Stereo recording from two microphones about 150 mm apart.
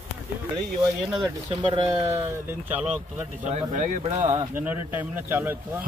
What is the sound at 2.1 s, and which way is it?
Speech, 15° right (ahead or behind).